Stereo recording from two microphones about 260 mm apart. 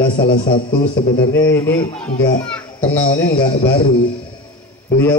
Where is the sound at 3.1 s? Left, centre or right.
Left.